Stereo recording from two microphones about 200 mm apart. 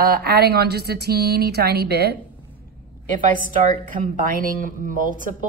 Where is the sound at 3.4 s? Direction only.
45° right (ahead or behind).